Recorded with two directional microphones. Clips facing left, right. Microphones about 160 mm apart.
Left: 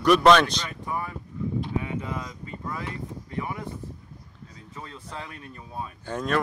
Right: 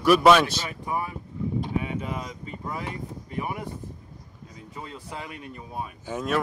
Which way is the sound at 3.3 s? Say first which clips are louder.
Right 1 dB; 15° right (ahead or behind).